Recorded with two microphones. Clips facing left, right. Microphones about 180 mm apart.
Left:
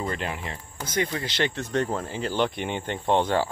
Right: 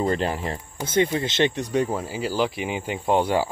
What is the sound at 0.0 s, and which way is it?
Speech, 35° right (ahead or behind).